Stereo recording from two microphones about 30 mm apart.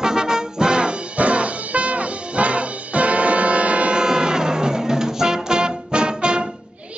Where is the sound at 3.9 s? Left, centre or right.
Right.